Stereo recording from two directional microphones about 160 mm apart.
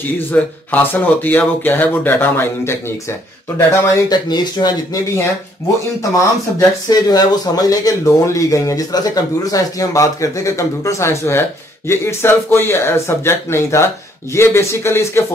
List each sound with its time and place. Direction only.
0.3 s speech: 10° left (ahead or behind)
4.1 s speech: 25° left (ahead or behind)
6.9 s speech: 25° left (ahead or behind)